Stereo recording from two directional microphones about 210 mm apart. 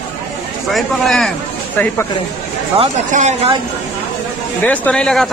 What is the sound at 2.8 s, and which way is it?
Speech, 35° right (ahead or behind).